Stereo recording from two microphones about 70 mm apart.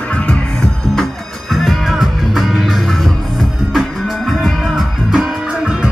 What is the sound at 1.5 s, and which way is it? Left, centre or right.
Music, centre.